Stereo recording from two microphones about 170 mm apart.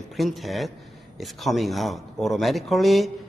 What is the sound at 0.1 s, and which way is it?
A man's voice, centre (ahead or behind).